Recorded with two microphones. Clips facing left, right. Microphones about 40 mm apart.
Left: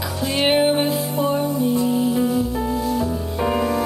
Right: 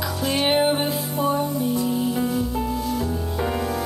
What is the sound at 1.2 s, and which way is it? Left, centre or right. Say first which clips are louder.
Music: left 1 dB; left.